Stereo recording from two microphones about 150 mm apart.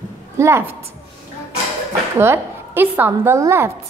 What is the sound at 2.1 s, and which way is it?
A woman's voice, 15° right (ahead or behind).